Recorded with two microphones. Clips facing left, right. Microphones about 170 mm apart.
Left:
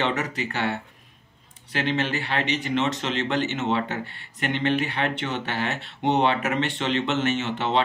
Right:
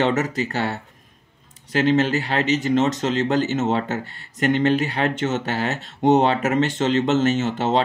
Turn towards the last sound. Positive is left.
turn(degrees=-40)  # may be behind; listen again after turning